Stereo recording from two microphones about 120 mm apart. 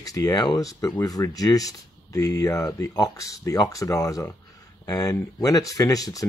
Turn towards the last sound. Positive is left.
turn(degrees=30)  # may be behind; listen again after turning